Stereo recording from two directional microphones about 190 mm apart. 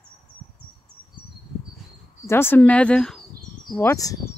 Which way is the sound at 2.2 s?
10° left (ahead or behind).